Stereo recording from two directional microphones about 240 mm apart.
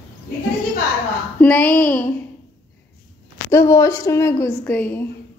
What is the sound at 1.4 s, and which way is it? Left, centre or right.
Speech, centre.